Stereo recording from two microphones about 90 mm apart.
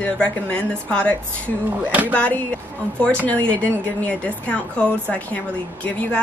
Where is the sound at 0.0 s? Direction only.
15° left (ahead or behind).